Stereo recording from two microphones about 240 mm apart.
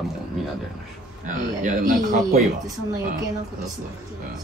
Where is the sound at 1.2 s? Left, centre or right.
Right.